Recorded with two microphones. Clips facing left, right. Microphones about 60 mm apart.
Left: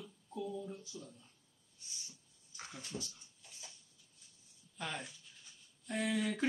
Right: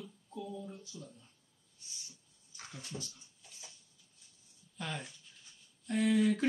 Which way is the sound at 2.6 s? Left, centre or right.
Centre.